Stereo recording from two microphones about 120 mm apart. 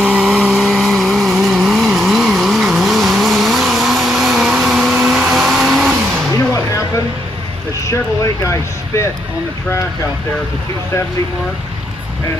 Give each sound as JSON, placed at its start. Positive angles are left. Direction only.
{"t": 0.0, "sound": "vehicle", "side_deg": -5}
{"t": 7.9, "sound": "vehicle", "side_deg": 25}